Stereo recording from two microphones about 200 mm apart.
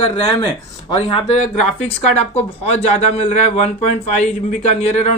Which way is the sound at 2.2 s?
30° left (ahead or behind).